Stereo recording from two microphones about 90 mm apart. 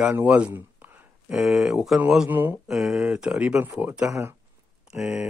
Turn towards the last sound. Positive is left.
turn(degrees=-5)  # may be behind; listen again after turning